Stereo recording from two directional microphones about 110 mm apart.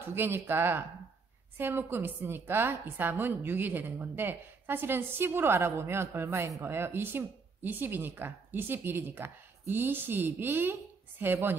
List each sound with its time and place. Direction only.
0.1 s a woman's voice: 20° right (ahead or behind)